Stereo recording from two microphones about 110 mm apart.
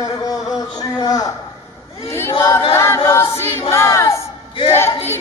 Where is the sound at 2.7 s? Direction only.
25° left (ahead or behind).